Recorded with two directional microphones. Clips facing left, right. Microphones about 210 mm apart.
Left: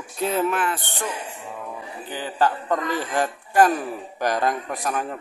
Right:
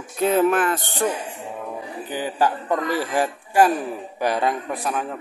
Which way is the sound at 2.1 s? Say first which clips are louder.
Right 1 dB; 15° right (ahead or behind).